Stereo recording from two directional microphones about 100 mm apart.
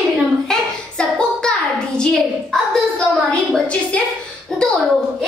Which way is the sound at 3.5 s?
10° left (ahead or behind).